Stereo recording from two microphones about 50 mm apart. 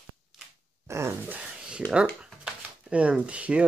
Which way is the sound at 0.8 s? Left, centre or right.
Right.